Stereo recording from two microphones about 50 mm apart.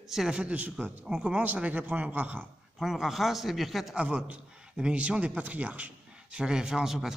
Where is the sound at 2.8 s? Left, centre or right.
Centre.